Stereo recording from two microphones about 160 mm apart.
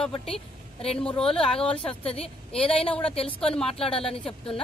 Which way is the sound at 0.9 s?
5° left (ahead or behind).